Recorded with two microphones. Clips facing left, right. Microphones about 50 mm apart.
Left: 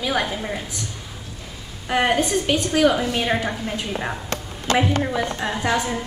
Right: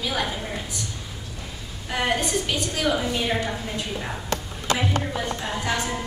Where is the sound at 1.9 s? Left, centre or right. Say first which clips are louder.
Left 5 dB; left.